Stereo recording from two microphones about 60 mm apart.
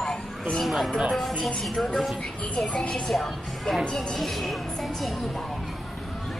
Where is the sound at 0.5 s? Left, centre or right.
Centre.